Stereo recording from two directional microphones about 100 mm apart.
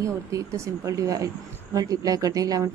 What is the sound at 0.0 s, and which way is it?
A woman's voice, 35° right (ahead or behind).